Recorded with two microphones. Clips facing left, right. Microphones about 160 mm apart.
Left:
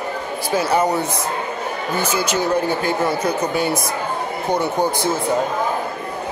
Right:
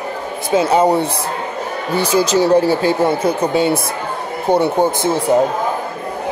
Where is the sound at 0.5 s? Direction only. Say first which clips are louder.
Right 5 dB; 25° right (ahead or behind).